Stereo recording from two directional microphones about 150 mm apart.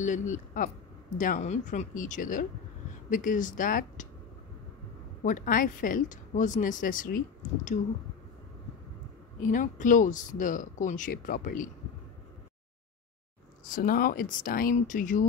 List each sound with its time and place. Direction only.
0.0 s speech: 55° left (ahead or behind)
5.2 s speech: 60° left (ahead or behind)
9.4 s speech: 60° left (ahead or behind)
13.7 s speech: 70° left (ahead or behind)